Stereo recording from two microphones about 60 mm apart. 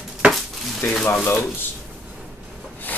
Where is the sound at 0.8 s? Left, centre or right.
Left.